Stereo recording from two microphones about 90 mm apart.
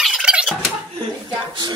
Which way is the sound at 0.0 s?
10° right (ahead or behind).